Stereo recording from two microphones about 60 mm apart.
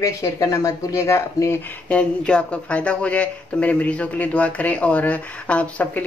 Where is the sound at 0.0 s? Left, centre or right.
Left.